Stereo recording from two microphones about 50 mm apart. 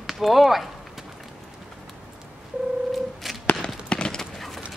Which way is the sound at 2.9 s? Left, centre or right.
Centre.